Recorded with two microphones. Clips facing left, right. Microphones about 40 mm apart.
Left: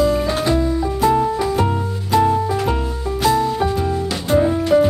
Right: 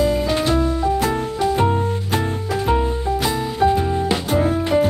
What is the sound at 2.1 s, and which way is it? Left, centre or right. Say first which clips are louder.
Music: left 9 dB; right.